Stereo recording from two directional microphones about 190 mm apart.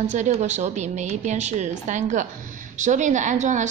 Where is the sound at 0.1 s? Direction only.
40° right (ahead or behind).